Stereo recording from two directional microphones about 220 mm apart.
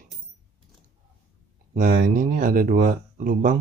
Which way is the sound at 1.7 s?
40° right (ahead or behind).